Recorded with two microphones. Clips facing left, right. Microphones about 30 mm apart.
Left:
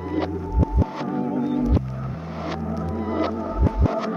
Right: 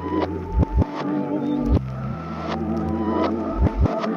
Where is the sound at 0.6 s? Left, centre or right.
Centre.